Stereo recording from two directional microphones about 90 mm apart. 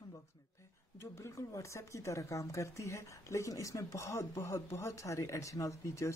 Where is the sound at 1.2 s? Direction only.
35° left (ahead or behind).